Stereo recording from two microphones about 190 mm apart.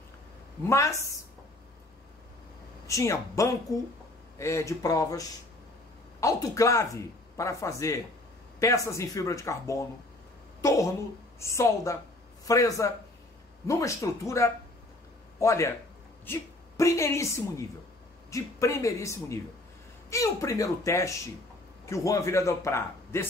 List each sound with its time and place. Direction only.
0.7 s a man's voice: 15° left (ahead or behind)
2.9 s a man's voice: 15° left (ahead or behind)